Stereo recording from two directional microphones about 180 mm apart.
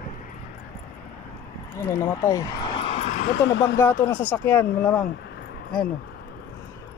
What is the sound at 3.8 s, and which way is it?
Speech, 10° left (ahead or behind).